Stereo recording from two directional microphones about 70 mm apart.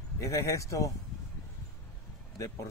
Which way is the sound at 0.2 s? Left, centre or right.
Left.